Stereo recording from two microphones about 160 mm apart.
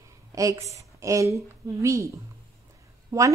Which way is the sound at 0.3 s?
20° right (ahead or behind).